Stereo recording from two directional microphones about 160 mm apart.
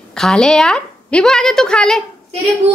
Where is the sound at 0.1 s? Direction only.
5° left (ahead or behind).